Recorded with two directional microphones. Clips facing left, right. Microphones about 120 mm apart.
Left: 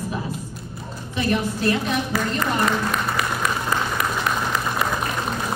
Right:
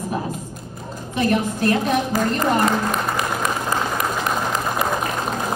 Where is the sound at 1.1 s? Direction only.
45° right (ahead or behind).